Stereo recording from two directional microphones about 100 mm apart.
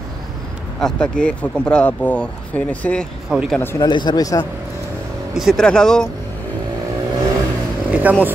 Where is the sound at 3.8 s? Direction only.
45° left (ahead or behind).